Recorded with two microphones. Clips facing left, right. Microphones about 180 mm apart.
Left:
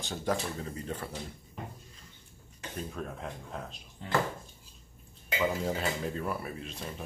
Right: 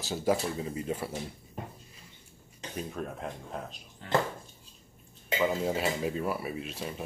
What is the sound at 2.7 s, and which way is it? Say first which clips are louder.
Speech: right 2 dB; 5° right (ahead or behind).